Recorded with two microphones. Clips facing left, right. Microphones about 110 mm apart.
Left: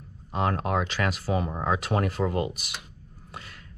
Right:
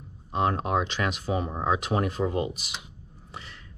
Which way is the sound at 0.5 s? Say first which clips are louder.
Left 1 dB; 25° right (ahead or behind).